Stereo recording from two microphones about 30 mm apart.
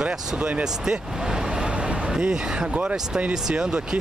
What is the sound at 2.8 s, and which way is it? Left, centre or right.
Speech, right.